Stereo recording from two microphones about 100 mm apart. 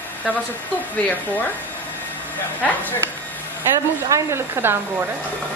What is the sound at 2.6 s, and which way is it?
Speech, 15° left (ahead or behind).